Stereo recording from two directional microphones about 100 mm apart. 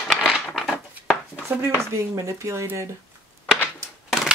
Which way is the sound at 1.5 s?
20° right (ahead or behind).